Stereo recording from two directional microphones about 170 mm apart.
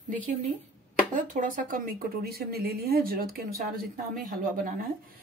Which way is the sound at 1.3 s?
55° right (ahead or behind).